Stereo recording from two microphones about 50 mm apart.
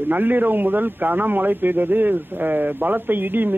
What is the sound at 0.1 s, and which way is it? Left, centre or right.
A man's voice, right.